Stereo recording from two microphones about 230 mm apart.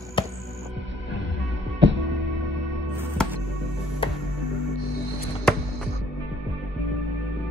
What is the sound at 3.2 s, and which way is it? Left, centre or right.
Music, centre.